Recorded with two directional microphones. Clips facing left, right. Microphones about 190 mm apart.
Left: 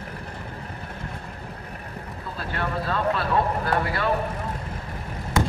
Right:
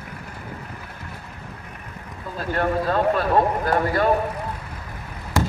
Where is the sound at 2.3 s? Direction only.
45° right (ahead or behind).